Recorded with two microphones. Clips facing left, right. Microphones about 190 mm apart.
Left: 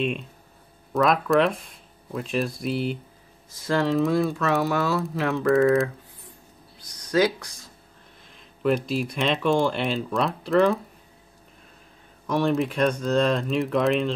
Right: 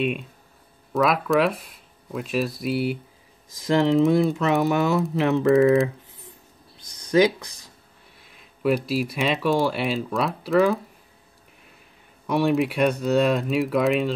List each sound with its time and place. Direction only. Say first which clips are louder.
0.0 s speech: right 2 dB; 5° right (ahead or behind)
3.5 s speech: right 4 dB; 20° right (ahead or behind)
7.1 s speech: right 3 dB; 20° right (ahead or behind)
8.3 s speech: right 1 dB; 5° right (ahead or behind)
12.3 s speech: right 2 dB; 10° right (ahead or behind)